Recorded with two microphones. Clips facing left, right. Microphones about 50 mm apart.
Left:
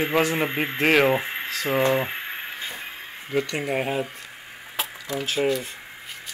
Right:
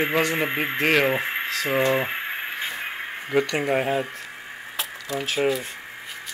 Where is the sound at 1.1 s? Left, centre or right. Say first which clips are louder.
Right 1 dB; centre.